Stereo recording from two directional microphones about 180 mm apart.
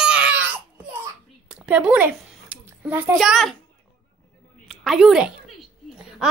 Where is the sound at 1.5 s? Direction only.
5° right (ahead or behind).